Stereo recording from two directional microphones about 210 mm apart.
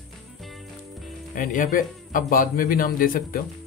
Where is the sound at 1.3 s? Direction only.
40° left (ahead or behind).